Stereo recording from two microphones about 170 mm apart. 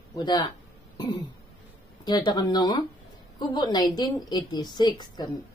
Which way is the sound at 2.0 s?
25° left (ahead or behind).